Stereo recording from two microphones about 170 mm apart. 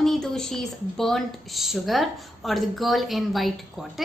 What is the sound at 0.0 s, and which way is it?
Speech, centre (ahead or behind).